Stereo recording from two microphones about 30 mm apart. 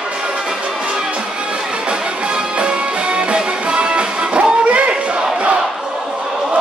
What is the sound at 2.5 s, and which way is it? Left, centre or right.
Music, right.